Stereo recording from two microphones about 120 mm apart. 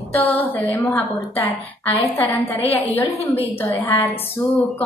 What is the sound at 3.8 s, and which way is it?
Speech, 20° left (ahead or behind).